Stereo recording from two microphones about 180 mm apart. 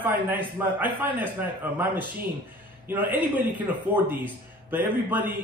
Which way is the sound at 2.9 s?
10° right (ahead or behind).